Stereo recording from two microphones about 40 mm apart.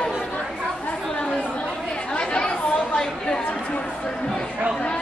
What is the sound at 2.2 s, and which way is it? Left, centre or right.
Chatter, left.